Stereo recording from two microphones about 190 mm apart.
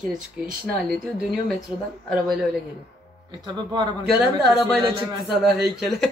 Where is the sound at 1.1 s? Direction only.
Centre (ahead or behind).